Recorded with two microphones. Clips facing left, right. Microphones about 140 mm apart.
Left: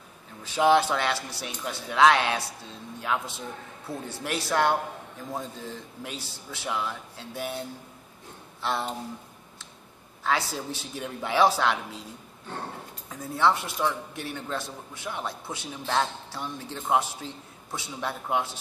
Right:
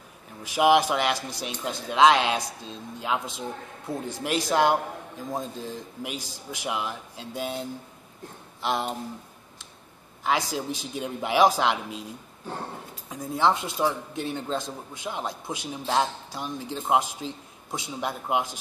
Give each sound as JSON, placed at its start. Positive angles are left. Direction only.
{"t": 0.4, "sound": "speech", "side_deg": -15}
{"t": 8.6, "sound": "speech", "side_deg": -15}
{"t": 10.2, "sound": "speech", "side_deg": -15}
{"t": 13.1, "sound": "speech", "side_deg": -15}